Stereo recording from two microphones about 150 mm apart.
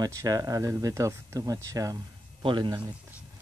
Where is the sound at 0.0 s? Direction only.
25° right (ahead or behind).